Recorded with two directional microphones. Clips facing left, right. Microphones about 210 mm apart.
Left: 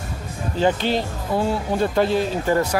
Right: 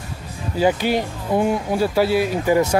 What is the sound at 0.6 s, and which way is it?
Speech, 10° right (ahead or behind).